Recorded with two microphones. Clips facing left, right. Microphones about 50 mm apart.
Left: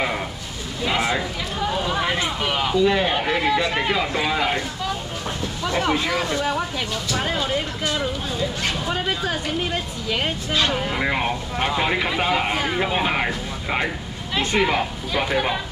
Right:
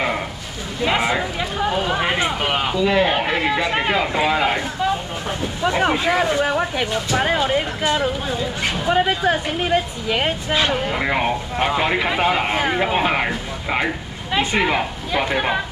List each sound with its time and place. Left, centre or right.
0.8 s speech: centre